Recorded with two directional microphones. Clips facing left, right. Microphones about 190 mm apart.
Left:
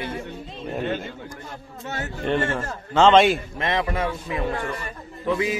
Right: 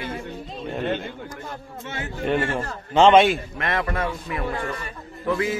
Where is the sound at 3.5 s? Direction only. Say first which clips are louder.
Left 1 dB; 20° left (ahead or behind).